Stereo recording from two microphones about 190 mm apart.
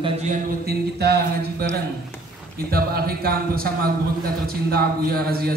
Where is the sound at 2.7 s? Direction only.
55° right (ahead or behind).